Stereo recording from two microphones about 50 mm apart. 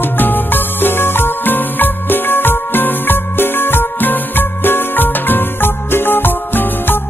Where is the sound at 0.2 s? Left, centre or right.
Left.